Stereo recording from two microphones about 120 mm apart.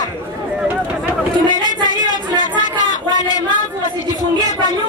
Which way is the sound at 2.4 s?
90° left.